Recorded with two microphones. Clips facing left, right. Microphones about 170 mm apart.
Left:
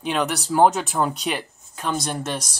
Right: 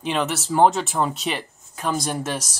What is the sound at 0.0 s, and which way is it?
Speech, centre (ahead or behind).